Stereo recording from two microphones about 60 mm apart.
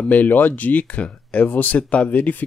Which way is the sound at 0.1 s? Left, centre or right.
Left.